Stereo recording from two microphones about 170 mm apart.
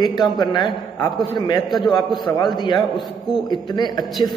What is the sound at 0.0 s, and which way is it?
Speech, 25° left (ahead or behind).